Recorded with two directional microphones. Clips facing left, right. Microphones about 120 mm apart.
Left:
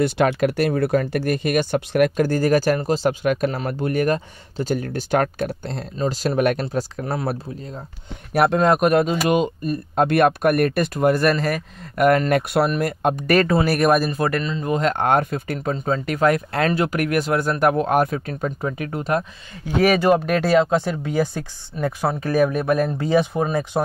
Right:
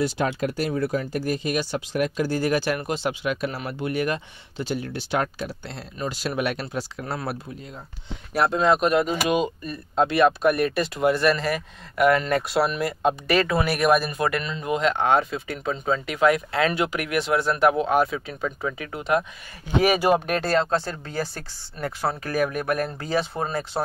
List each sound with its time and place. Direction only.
0.0 s speech: 70° left (ahead or behind); by 5.7 s 55° left (ahead or behind)
5.9 s speech: 40° left (ahead or behind)
8.3 s speech: 60° left (ahead or behind); by 19.2 s 40° left (ahead or behind)
19.8 s speech: 5° right (ahead or behind); by 23.8 s 15° left (ahead or behind)